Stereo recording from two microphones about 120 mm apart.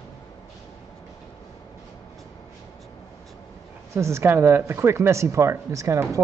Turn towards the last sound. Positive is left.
turn(degrees=-25)  # may be behind; listen again after turning